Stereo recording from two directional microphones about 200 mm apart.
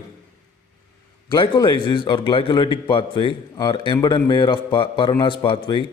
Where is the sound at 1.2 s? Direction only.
25° left (ahead or behind).